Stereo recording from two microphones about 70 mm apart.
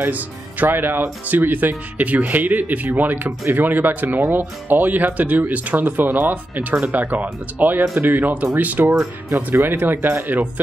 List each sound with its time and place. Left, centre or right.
0.0 s speech: right